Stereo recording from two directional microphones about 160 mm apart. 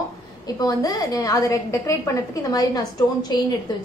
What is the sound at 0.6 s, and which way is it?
A woman's voice, 25° left (ahead or behind).